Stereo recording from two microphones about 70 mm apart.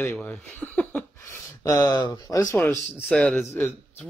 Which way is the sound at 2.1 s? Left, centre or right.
Left.